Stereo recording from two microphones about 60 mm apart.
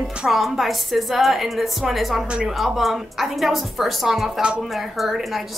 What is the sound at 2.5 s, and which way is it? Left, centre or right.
A woman's voice, centre.